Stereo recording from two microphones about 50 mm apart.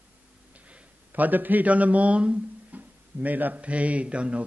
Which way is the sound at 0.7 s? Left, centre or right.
Right.